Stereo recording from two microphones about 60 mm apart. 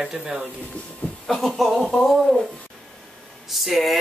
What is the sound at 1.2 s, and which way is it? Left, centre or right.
Speech, centre.